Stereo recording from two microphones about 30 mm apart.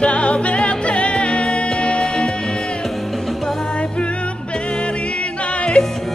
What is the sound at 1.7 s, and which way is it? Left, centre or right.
Music, left.